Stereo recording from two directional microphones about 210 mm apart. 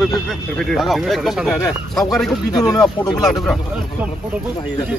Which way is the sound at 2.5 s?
20° left (ahead or behind).